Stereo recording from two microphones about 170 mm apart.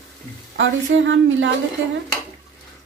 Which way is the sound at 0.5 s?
90° right.